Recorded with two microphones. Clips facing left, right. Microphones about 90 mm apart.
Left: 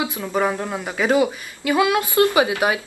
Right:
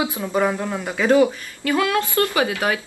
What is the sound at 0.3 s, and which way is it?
Speech, 5° left (ahead or behind).